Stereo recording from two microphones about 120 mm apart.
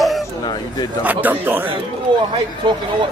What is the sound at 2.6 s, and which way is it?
Speech, 40° right (ahead or behind).